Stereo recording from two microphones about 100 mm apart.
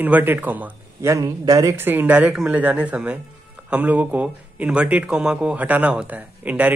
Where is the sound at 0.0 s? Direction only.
20° right (ahead or behind).